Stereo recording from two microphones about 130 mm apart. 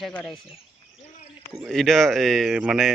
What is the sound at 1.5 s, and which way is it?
Speech, centre (ahead or behind).